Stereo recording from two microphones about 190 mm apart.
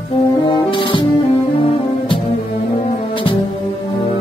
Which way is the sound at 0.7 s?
25° left (ahead or behind).